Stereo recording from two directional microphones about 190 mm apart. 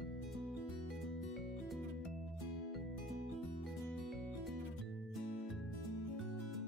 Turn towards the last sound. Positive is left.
turn(degrees=0)  # may be behind; listen again after turning